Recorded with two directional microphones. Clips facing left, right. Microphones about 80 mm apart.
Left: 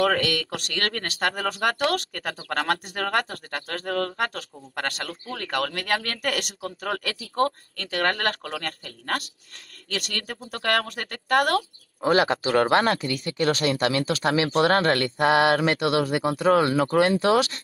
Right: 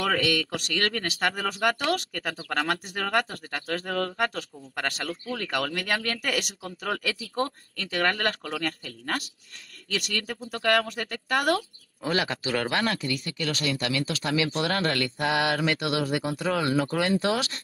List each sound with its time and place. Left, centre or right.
0.0 s speech: left
13.7 s speech: left
14.0 s speech: left